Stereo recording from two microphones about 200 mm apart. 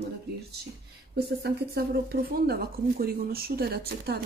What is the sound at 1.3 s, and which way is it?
Speech, 50° right (ahead or behind).